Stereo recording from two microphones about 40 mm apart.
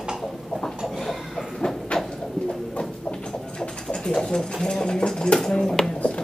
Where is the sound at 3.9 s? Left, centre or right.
Centre.